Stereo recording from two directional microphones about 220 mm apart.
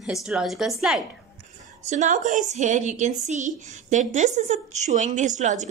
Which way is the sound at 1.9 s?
35° right (ahead or behind).